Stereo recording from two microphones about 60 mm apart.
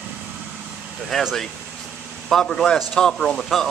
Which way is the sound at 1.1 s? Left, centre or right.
Centre.